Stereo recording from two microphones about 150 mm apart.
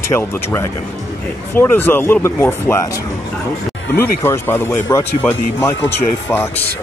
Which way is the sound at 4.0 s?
15° left (ahead or behind).